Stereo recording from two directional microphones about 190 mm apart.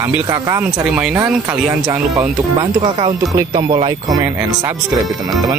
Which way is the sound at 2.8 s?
30° right (ahead or behind).